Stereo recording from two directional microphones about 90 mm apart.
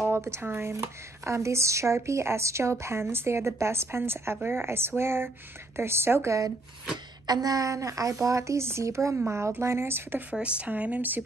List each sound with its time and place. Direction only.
0.0 s a woman's voice: 30° right (ahead or behind)
10.4 s speech: 15° right (ahead or behind)